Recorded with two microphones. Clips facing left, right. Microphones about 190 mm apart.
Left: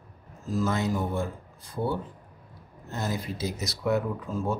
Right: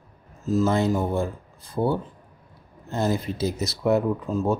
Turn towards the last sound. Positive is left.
turn(degrees=-25)  # may be behind; listen again after turning